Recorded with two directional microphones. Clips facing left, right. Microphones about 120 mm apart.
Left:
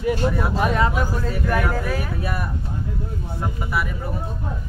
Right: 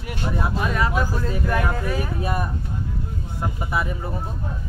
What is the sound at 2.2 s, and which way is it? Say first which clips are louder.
Speech: right 2 dB; 25° right (ahead or behind).